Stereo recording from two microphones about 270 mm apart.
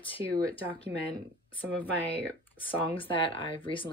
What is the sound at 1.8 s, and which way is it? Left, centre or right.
Speech, centre.